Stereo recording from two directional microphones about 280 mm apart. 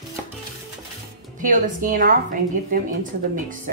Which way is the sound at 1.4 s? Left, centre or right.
Right.